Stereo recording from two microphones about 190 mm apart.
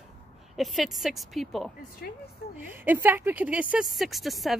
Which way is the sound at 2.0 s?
55° left (ahead or behind).